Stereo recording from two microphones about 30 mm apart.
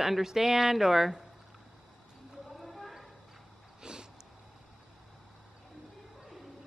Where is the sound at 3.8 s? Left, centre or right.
Right.